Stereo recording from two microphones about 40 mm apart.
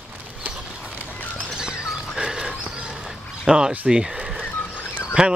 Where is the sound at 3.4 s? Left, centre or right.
Centre.